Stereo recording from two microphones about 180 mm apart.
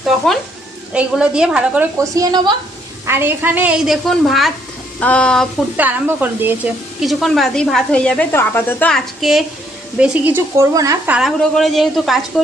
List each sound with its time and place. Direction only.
0.0 s speech: centre (ahead or behind)
2.1 s a woman's voice: 20° right (ahead or behind); by 5.5 s 5° left (ahead or behind)
5.8 s a woman's voice: 10° right (ahead or behind)
11.1 s speech: centre (ahead or behind)